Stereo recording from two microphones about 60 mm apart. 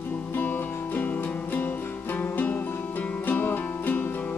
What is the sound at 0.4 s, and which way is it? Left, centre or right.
Music, left.